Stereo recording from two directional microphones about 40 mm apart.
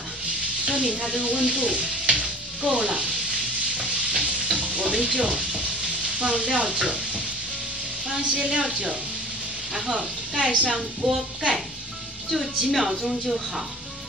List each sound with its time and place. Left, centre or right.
0.7 s sizzle: right
2.8 s a woman's voice: right
3.7 s stir: centre
4.6 s frying: right
5.0 s a woman's voice: right
6.0 s sizzle: right
8.4 s a woman's voice: centre
9.9 s a woman's voice: right
12.3 s speech: centre